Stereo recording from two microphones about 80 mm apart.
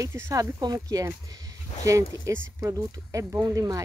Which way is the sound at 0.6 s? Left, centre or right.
Right.